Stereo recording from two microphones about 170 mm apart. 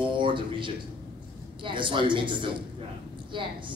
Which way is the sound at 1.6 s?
30° right (ahead or behind).